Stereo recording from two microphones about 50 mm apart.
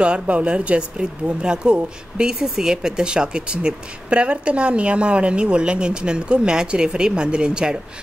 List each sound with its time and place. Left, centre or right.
0.0 s speech: right